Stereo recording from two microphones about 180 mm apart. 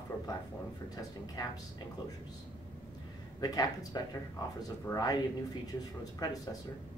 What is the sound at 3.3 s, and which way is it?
Speech, 20° left (ahead or behind).